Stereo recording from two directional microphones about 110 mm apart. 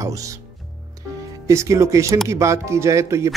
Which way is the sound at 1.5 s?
25° right (ahead or behind).